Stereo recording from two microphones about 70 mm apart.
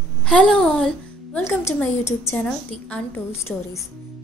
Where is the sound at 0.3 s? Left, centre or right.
Centre.